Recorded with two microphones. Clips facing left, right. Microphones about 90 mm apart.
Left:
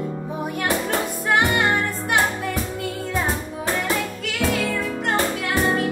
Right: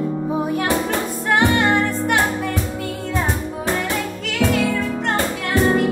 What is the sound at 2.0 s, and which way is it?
Music, 15° left (ahead or behind).